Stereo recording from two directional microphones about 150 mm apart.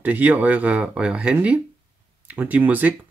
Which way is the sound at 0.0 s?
10° right (ahead or behind).